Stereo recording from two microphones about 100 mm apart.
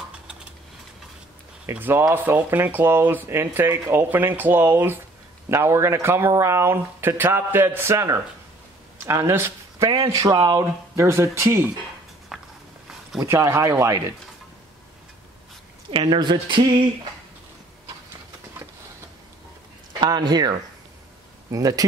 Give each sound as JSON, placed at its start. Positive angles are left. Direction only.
{"t": 1.7, "sound": "speech", "side_deg": -20}
{"t": 10.0, "sound": "speech", "side_deg": -40}
{"t": 10.6, "sound": "speech", "side_deg": -30}
{"t": 12.3, "sound": "a sound", "side_deg": -5}
{"t": 13.2, "sound": "speech", "side_deg": -30}
{"t": 15.9, "sound": "a woman's voice", "side_deg": -55}
{"t": 19.9, "sound": "speech", "side_deg": -45}